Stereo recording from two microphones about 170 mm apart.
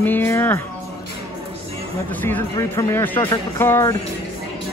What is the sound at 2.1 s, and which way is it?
Speech, 10° left (ahead or behind).